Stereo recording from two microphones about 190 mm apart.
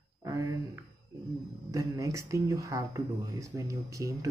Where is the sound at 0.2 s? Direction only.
20° right (ahead or behind).